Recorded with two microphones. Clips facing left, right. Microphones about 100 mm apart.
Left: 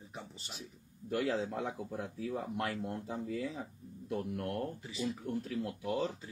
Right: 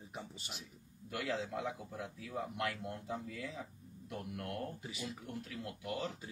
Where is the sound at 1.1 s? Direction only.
40° left (ahead or behind).